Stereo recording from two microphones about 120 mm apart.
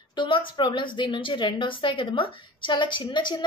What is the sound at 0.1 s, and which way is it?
A woman's voice, 40° left (ahead or behind).